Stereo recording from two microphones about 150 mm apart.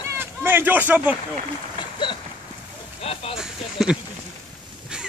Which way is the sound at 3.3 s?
5° right (ahead or behind).